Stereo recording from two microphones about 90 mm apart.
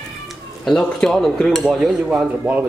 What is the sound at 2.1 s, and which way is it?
Speech, 15° right (ahead or behind).